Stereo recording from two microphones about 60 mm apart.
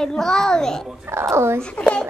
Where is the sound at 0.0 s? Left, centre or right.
Centre.